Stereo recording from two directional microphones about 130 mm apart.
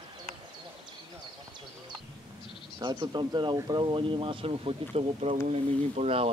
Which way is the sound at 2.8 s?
35° right (ahead or behind).